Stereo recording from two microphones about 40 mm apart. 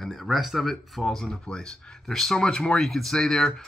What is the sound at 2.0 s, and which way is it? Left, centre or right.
Speech, centre.